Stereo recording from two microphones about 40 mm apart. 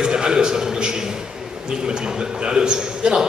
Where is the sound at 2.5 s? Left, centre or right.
Centre.